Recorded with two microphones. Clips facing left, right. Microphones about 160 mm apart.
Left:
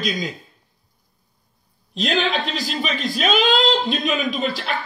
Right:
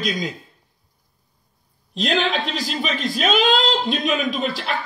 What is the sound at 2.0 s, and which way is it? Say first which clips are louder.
Speech: even; 40° left (ahead or behind).